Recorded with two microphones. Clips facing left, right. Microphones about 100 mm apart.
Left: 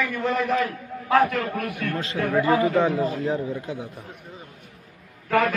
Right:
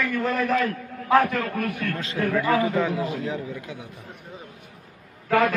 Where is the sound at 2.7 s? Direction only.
35° left (ahead or behind).